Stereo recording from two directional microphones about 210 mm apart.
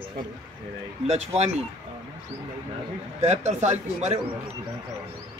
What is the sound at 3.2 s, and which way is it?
Speech, 35° right (ahead or behind).